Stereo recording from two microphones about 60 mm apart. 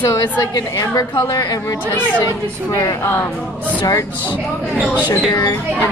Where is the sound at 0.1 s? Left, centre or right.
Left.